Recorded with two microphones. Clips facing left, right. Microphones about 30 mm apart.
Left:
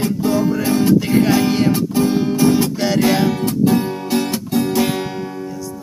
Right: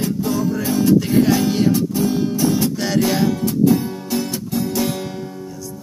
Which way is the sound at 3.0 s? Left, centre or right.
Left.